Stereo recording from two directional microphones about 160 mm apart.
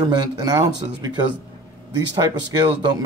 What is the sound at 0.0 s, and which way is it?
Speech, 25° right (ahead or behind).